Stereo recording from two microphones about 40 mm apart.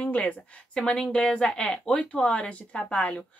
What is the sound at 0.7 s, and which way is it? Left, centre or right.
Speech, left.